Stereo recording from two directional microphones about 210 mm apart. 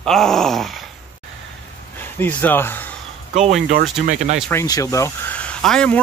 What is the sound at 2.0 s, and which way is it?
Speech, 10° left (ahead or behind).